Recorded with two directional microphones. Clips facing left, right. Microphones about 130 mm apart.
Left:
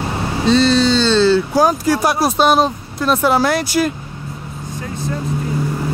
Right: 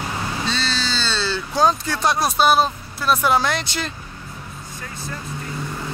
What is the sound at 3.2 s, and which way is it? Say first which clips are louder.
Speech: left 5 dB; 15° left (ahead or behind).